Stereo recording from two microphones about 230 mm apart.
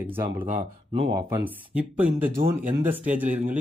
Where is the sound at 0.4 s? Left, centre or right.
Right.